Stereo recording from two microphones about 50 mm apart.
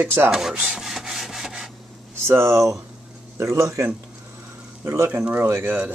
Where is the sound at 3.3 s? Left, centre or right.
Right.